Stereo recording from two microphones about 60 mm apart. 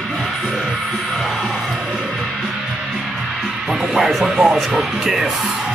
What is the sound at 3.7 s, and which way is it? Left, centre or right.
Music, centre.